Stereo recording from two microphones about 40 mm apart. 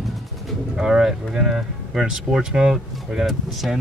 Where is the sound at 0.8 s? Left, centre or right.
Centre.